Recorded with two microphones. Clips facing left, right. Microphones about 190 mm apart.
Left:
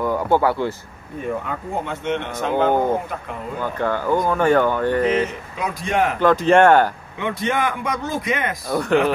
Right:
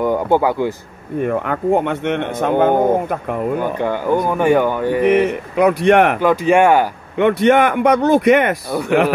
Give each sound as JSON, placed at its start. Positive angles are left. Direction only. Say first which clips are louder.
{"t": 0.0, "sound": "speech", "louder": "right 3 dB", "side_deg": -20}
{"t": 1.2, "sound": "speech", "louder": "right 8 dB", "side_deg": -65}
{"t": 3.6, "sound": "speech", "louder": "right 3 dB", "side_deg": -15}
{"t": 5.3, "sound": "a man's voice", "louder": "right 13 dB", "side_deg": -65}
{"t": 6.1, "sound": "speech", "louder": "right 1 dB", "side_deg": -10}
{"t": 7.2, "sound": "speech", "louder": "right 11 dB", "side_deg": -65}
{"t": 8.6, "sound": "speech", "louder": "right 2 dB", "side_deg": -10}